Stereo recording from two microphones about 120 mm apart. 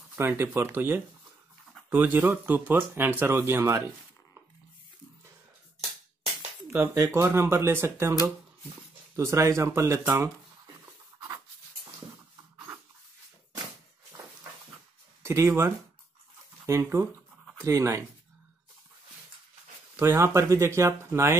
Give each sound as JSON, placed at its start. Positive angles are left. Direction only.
{"t": 0.1, "sound": "speech", "side_deg": -20}
{"t": 6.7, "sound": "speech", "side_deg": -20}
{"t": 15.2, "sound": "speech", "side_deg": -25}
{"t": 20.0, "sound": "speech", "side_deg": -20}